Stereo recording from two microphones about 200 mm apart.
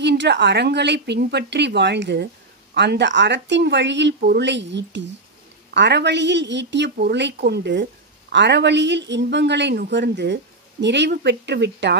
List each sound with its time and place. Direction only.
0.0 s speech: 60° right (ahead or behind)